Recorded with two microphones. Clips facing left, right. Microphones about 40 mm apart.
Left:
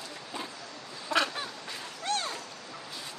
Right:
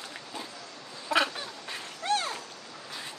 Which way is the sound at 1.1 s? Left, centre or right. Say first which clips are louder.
Right 2 dB; centre.